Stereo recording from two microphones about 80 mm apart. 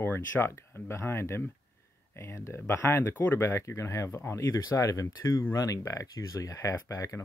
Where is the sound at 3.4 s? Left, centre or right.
Left.